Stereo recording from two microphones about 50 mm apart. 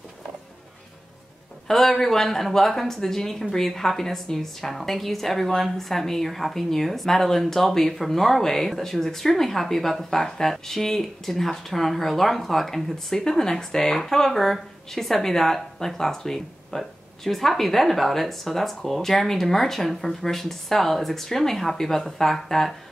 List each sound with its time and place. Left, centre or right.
1.7 s a woman's voice: centre